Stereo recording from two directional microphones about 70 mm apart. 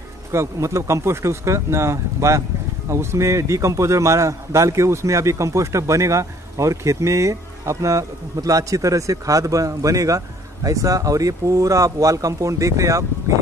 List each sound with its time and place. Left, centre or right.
0.3 s a man's voice: right